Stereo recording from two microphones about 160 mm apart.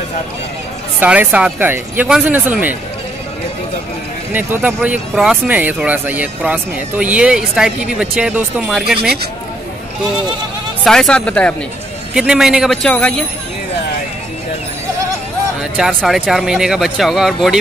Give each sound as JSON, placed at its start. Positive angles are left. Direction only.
{"t": 0.9, "sound": "speech", "side_deg": -10}
{"t": 4.3, "sound": "speech", "side_deg": -10}
{"t": 8.9, "sound": "speech", "side_deg": -80}
{"t": 10.8, "sound": "speech", "side_deg": 0}
{"t": 12.1, "sound": "speech", "side_deg": -5}
{"t": 15.8, "sound": "speech", "side_deg": 0}